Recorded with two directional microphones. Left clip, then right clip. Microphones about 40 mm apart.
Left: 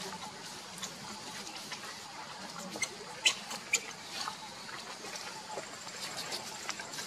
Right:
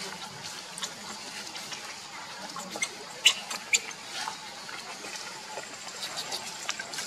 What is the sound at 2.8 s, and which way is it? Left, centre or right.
Rodents, centre.